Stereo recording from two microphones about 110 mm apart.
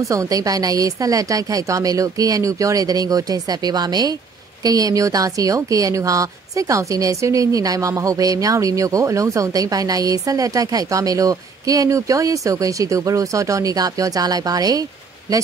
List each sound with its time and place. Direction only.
0.1 s a woman's voice: 30° right (ahead or behind)